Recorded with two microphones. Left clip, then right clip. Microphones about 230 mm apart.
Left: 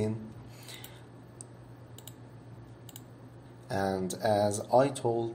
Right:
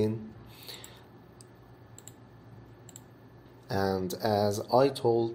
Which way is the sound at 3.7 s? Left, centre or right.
Right.